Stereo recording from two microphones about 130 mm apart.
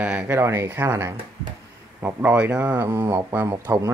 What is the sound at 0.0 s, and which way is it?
A man's voice, 10° right (ahead or behind).